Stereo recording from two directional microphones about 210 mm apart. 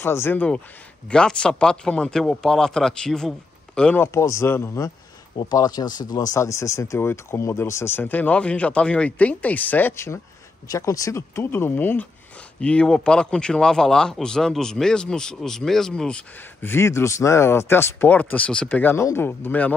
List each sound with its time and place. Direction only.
0.0 s speech: 10° left (ahead or behind)
5.3 s speech: 25° left (ahead or behind); by 19.7 s 10° left (ahead or behind)